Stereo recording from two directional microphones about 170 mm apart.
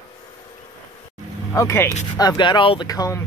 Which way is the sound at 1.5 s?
15° left (ahead or behind).